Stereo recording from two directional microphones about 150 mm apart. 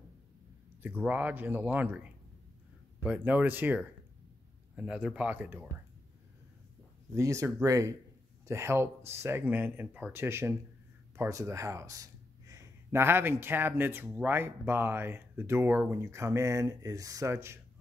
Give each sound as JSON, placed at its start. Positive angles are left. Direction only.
{"t": 0.8, "sound": "speech", "side_deg": -10}
{"t": 7.2, "sound": "speech", "side_deg": -20}